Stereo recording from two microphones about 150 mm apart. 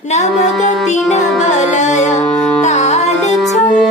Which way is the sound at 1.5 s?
55° left (ahead or behind).